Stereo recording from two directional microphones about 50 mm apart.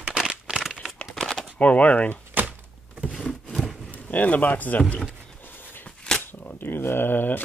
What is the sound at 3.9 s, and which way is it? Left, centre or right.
Speech, left.